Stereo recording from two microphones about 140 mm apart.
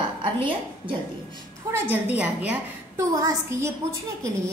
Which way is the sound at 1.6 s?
25° right (ahead or behind).